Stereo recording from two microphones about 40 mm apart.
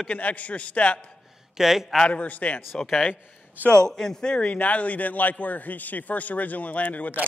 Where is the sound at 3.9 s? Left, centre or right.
Centre.